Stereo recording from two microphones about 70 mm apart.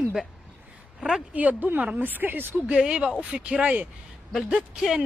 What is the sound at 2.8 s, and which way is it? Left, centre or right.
Speech, centre.